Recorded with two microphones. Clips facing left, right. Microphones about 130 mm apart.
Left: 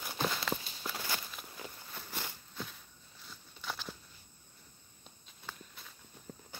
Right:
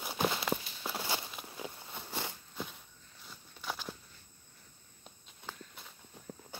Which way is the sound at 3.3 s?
5° right (ahead or behind).